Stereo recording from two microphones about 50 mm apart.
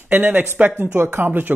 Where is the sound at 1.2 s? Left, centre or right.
Right.